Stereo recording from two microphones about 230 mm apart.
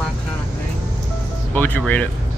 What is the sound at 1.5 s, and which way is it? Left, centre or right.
Speech, centre.